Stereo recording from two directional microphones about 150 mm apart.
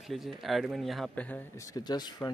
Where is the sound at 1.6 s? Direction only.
25° left (ahead or behind).